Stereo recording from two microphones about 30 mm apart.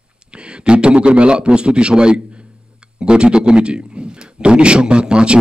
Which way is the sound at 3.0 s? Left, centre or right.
Right.